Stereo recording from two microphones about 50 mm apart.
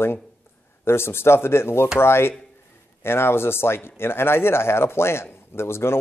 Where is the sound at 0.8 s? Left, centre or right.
Left.